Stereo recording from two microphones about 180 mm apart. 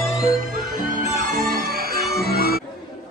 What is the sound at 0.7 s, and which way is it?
Music, 50° right (ahead or behind).